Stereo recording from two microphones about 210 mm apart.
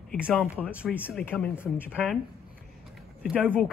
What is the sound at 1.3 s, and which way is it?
Speech, 10° left (ahead or behind).